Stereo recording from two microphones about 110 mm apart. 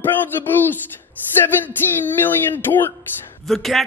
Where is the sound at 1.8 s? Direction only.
20° left (ahead or behind).